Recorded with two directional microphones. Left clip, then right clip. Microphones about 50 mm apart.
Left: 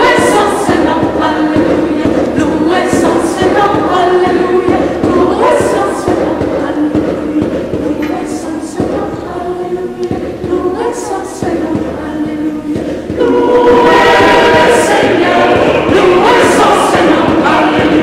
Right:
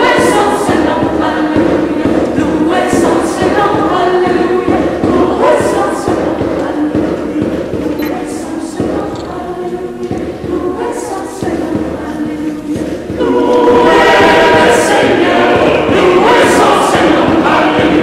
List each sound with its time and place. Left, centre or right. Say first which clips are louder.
0.1 s choir: left 1 dB; centre
1.7 s music: left 1 dB; centre
2.4 s choir: left 1 dB; centre
4.2 s music: left 1 dB; centre
13.2 s choir: left 1 dB; centre